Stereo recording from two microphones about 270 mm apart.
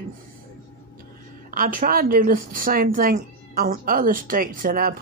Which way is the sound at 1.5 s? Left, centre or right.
Right.